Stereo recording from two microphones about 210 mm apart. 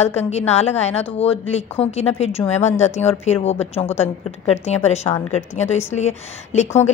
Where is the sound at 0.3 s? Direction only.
30° left (ahead or behind).